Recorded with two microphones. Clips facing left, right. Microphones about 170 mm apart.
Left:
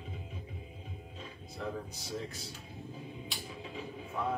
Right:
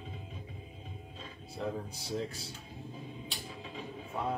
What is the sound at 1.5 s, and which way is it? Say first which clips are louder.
Speech: right 2 dB; 30° right (ahead or behind).